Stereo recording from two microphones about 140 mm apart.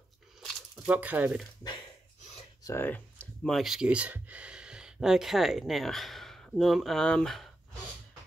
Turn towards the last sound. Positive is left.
turn(degrees=0)  # may be behind; listen again after turning